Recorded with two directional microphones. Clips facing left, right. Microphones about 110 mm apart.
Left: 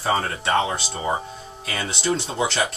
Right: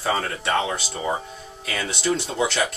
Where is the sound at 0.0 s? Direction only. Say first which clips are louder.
Left 1 dB; 25° left (ahead or behind).